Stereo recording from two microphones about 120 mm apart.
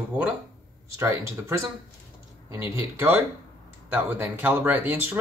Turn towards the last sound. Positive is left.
turn(degrees=-15)  # may be behind; listen again after turning